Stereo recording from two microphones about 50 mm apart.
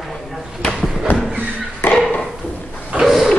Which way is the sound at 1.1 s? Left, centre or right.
Left.